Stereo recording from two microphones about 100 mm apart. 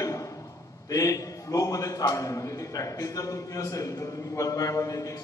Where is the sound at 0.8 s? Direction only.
35° left (ahead or behind).